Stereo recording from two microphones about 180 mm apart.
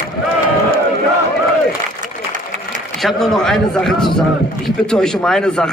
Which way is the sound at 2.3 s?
45° right (ahead or behind).